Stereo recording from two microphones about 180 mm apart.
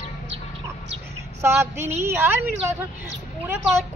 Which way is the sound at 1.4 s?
15° right (ahead or behind).